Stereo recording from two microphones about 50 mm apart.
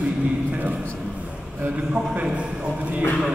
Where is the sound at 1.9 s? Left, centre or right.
Right.